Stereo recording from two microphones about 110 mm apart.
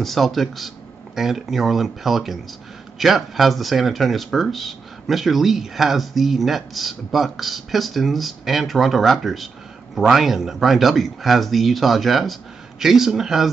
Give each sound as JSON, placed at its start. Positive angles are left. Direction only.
{"t": 0.0, "sound": "speech", "side_deg": 0}